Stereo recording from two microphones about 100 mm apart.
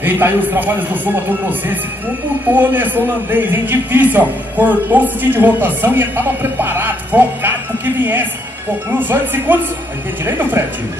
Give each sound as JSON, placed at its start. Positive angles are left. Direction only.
{"t": 0.0, "sound": "a man's voice", "side_deg": -20}